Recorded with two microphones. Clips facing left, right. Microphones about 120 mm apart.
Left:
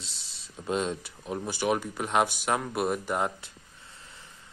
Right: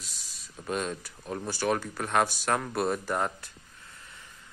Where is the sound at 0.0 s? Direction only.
25° left (ahead or behind).